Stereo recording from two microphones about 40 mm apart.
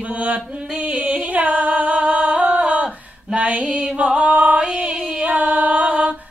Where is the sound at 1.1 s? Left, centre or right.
Right.